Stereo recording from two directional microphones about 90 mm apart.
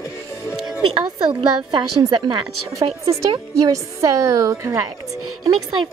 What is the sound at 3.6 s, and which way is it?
A woman's voice, 40° right (ahead or behind).